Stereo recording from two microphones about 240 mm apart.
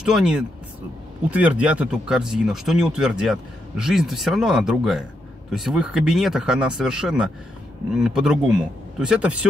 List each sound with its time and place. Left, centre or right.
0.0 s speech: centre